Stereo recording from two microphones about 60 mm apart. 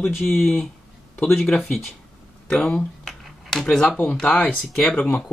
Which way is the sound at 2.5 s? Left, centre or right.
Centre.